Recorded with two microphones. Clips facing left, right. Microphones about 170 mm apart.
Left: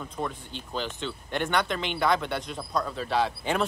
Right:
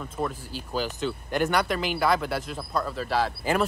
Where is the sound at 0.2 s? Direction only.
5° right (ahead or behind).